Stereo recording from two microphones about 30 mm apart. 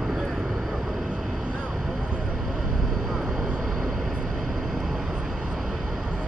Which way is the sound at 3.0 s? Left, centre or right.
Centre.